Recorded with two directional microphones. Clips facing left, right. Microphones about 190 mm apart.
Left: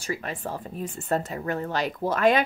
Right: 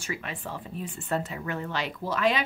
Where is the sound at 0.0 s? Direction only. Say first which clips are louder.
Left 4 dB; 40° left (ahead or behind).